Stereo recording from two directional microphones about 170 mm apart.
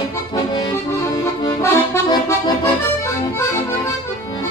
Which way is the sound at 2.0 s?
25° left (ahead or behind).